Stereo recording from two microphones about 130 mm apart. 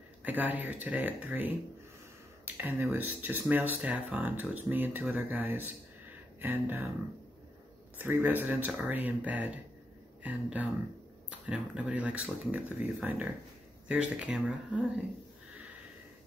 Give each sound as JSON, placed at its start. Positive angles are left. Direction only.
{"t": 0.2, "sound": "speech", "side_deg": -15}
{"t": 8.0, "sound": "speech", "side_deg": -15}